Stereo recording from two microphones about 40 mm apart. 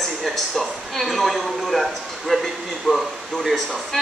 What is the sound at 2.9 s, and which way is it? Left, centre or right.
Speech, right.